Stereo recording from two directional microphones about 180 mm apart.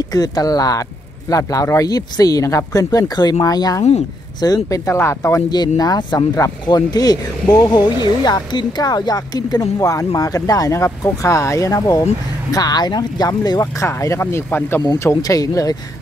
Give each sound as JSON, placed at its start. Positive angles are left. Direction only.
{"t": 0.1, "sound": "speech", "side_deg": 20}